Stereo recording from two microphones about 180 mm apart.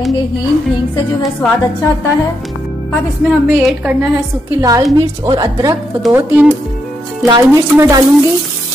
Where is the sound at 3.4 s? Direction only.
5° right (ahead or behind).